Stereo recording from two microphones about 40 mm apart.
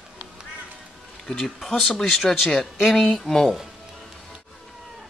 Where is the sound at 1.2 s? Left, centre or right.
Centre.